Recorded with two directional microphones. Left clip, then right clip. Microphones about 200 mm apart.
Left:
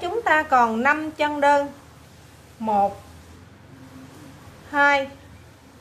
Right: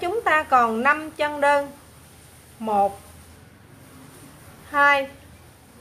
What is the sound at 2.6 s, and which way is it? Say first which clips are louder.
Speech: even; 15° right (ahead or behind).